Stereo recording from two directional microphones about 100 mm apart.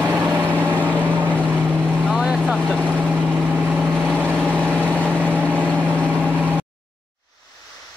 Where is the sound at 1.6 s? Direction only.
15° right (ahead or behind).